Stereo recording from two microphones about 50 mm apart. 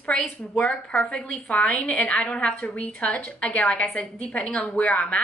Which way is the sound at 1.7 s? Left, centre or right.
Left.